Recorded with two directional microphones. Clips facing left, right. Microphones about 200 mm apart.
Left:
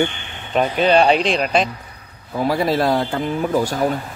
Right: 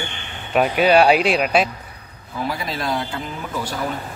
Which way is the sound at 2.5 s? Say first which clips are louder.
Left 9 dB; 45° left (ahead or behind).